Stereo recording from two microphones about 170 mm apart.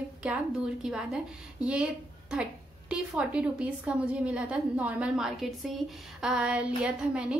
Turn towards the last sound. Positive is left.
turn(degrees=-5)  # may be behind; listen again after turning